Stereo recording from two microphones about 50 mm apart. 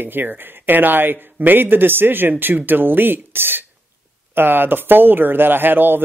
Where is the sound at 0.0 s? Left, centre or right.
Right.